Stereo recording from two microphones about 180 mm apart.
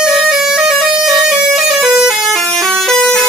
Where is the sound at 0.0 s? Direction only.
Centre (ahead or behind).